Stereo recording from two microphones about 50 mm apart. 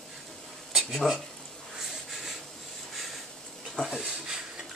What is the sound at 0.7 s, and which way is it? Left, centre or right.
Speech, centre.